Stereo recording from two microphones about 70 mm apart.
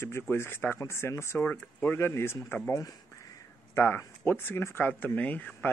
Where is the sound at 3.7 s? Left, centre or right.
Left.